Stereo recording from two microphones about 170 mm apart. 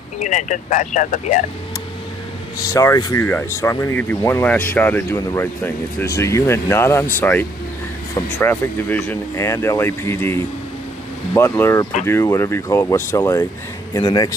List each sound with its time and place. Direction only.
0.2 s speech: 45° left (ahead or behind)
2.6 s a man's voice: 20° left (ahead or behind)